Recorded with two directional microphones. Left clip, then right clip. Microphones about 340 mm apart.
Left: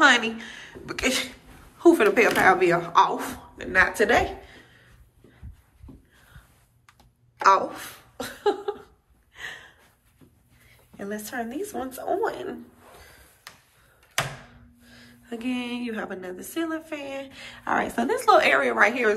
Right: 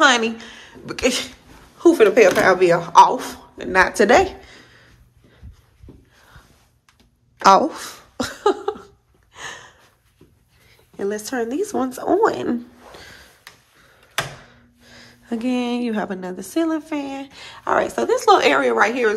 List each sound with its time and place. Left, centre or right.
0.0 s a woman's voice: centre
7.4 s speech: centre
9.3 s a sound: centre
11.0 s speech: centre
14.9 s a woman's voice: centre